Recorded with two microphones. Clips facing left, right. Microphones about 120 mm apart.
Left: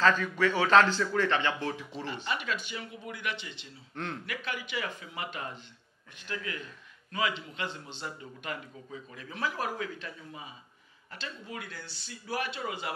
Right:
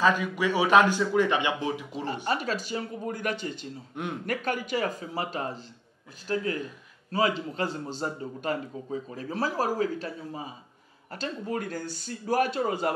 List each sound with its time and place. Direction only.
0.0 s speech: 10° right (ahead or behind)
2.2 s a man's voice: 40° right (ahead or behind)
3.9 s speech: 15° right (ahead or behind)
4.3 s a man's voice: 45° right (ahead or behind)